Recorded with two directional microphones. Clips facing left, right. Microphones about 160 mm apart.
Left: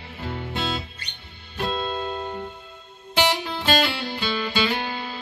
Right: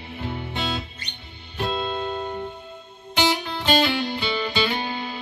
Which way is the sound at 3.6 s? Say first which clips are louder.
Right 3 dB; 15° right (ahead or behind).